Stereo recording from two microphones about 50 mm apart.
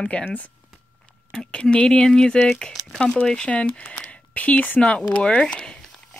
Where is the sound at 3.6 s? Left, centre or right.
Left.